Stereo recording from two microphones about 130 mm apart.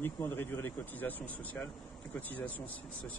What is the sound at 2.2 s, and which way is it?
Speech, 10° left (ahead or behind).